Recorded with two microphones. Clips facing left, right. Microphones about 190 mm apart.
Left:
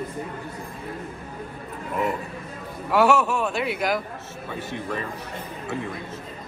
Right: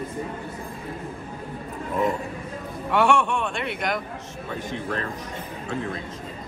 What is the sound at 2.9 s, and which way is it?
A man's voice, 5° left (ahead or behind).